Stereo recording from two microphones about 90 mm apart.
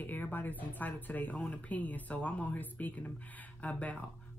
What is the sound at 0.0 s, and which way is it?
Speech, 20° left (ahead or behind).